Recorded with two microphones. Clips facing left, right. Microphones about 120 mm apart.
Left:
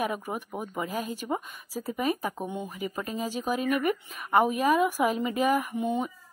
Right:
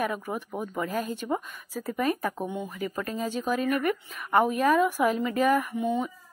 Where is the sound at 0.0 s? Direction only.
15° left (ahead or behind).